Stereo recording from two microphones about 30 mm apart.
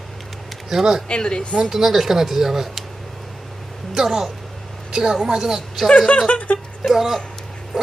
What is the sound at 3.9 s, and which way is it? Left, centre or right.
Speech, centre.